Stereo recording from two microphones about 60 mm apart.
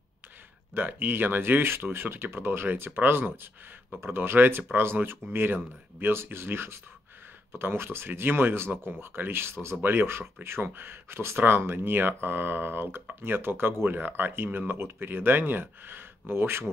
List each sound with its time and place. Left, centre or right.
0.7 s speech: right
9.8 s speech: right